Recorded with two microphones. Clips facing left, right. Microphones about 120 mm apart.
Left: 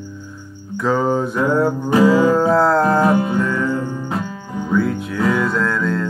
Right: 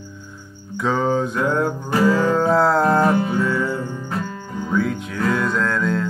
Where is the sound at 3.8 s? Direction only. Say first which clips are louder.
Left 4 dB; 15° left (ahead or behind).